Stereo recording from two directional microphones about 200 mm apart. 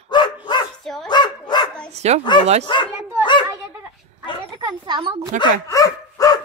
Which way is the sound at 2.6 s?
25° left (ahead or behind).